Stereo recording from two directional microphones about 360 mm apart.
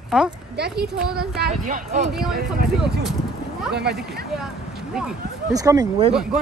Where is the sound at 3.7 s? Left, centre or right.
Right.